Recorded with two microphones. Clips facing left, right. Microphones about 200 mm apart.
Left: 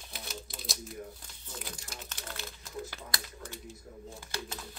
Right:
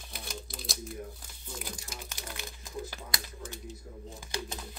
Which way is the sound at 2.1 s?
15° right (ahead or behind).